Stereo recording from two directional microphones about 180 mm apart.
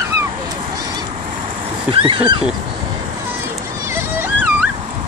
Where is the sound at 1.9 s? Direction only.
30° right (ahead or behind).